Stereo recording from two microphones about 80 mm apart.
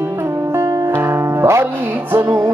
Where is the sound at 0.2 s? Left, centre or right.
Right.